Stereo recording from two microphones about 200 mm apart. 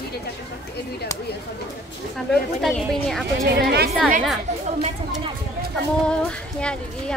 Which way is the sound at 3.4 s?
50° right (ahead or behind).